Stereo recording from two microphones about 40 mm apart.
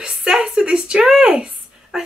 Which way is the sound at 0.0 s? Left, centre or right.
Right.